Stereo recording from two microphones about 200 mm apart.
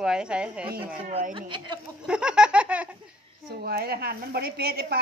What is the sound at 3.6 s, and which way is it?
A woman's voice, 50° right (ahead or behind).